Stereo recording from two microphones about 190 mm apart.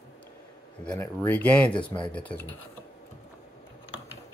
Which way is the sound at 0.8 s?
10° left (ahead or behind).